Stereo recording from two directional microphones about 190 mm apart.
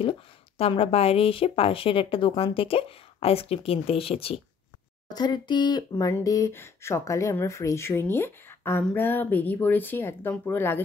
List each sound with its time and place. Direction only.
0.6 s a woman's voice: 30° left (ahead or behind); by 10.8 s 10° left (ahead or behind)